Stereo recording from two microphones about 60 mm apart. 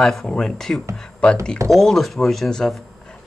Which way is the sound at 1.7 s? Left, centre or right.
Centre.